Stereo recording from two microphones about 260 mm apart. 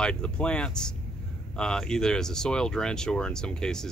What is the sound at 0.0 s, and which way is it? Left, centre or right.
Speech, centre.